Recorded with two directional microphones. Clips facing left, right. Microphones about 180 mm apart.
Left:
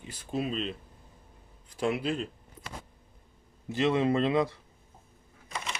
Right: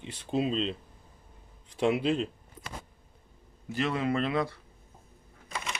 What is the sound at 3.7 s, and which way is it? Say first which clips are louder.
Speech: left 4 dB; 20° left (ahead or behind).